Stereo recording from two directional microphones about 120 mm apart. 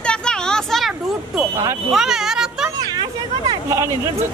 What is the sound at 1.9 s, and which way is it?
Speech, 5° right (ahead or behind).